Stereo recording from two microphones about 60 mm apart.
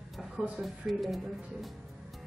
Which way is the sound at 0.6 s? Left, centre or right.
Centre.